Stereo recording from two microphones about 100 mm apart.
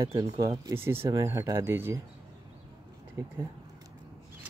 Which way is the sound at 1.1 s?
35° right (ahead or behind).